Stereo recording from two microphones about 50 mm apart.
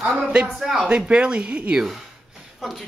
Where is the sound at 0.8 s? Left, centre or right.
Right.